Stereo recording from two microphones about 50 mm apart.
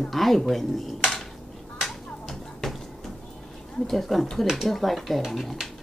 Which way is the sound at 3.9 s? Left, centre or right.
Centre.